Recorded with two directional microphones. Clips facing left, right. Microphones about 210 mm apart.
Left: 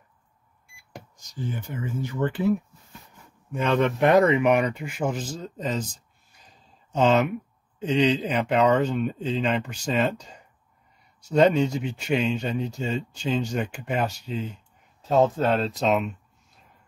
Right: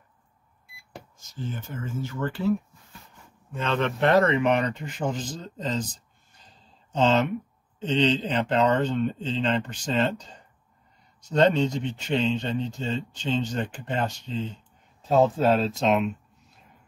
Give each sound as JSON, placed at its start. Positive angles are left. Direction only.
{"t": 1.1, "sound": "speech", "side_deg": 15}
{"t": 3.5, "sound": "speech", "side_deg": 15}
{"t": 7.0, "sound": "speech", "side_deg": 10}